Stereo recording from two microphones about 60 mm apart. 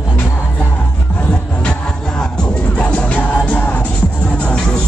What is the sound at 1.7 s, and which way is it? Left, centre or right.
Music, centre.